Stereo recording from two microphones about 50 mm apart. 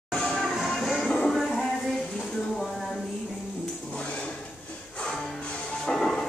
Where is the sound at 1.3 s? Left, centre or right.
Centre.